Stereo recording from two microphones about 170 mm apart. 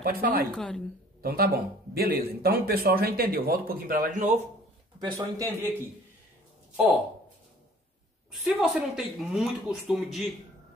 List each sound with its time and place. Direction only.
0.0 s speech: 60° right (ahead or behind)
0.6 s speech: 5° left (ahead or behind)
1.2 s speech: 60° right (ahead or behind)
4.9 s speech: 25° right (ahead or behind)
8.3 s speech: centre (ahead or behind)